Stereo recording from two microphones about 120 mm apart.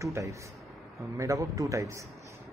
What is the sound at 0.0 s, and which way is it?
A man's voice, 25° right (ahead or behind).